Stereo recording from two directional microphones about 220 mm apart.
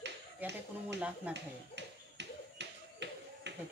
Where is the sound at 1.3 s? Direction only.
55° right (ahead or behind).